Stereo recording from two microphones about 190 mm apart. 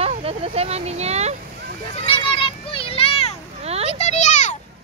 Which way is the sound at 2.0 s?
30° left (ahead or behind).